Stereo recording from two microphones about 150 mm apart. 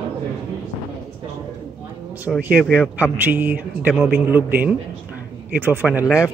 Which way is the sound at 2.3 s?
10° right (ahead or behind).